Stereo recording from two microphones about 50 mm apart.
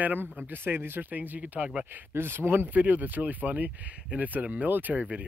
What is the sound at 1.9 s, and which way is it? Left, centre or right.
Speech, right.